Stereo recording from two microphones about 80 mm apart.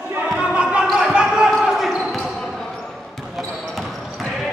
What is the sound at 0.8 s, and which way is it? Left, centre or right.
Basketball bounce, centre.